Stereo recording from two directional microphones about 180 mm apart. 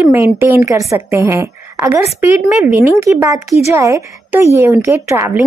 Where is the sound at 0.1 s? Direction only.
15° right (ahead or behind).